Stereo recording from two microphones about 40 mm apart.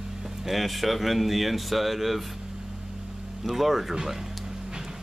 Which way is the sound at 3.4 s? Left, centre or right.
Centre.